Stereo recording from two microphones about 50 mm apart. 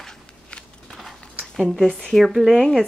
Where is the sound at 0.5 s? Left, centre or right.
Centre.